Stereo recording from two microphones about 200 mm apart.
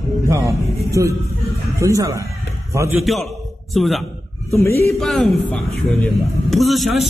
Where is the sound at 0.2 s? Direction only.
15° right (ahead or behind).